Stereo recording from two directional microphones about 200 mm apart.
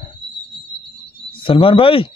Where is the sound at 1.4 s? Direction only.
25° left (ahead or behind).